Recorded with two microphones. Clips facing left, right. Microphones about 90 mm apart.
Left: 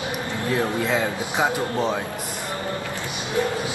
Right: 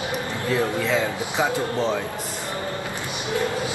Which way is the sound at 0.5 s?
20° left (ahead or behind).